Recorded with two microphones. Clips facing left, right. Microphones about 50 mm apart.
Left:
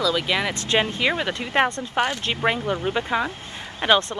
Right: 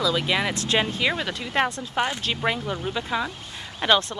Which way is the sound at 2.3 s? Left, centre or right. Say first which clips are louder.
Left 3 dB; centre.